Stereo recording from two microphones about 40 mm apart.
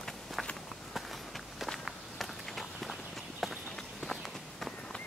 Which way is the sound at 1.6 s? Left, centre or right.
Centre.